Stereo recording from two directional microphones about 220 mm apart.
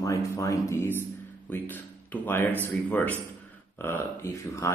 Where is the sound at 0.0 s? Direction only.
15° left (ahead or behind).